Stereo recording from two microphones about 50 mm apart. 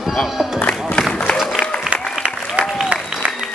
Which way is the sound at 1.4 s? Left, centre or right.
Centre.